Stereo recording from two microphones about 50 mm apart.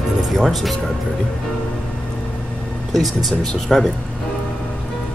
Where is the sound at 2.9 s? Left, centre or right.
Centre.